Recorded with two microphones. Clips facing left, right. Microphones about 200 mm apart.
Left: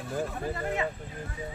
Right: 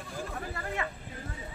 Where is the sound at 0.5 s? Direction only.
20° left (ahead or behind).